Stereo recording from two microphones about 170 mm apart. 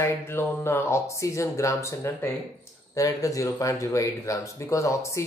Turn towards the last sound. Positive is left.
turn(degrees=15)  # may be behind; listen again after turning